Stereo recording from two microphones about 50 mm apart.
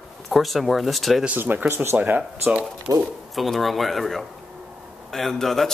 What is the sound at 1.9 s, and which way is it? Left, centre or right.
Speech, right.